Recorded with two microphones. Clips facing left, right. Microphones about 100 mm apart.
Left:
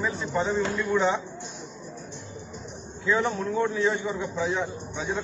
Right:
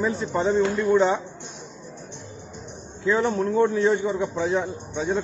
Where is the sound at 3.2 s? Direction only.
50° right (ahead or behind).